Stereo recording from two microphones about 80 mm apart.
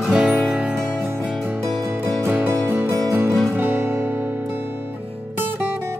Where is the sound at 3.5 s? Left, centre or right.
Right.